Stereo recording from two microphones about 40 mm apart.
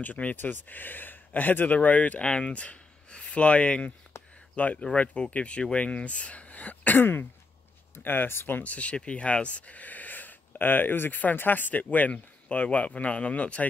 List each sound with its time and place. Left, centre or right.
0.0 s speech: left
8.6 s speech: left